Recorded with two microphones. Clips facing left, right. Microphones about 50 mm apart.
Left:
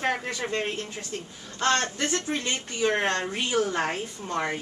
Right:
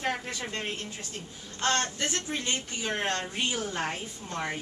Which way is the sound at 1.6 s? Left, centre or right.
Left.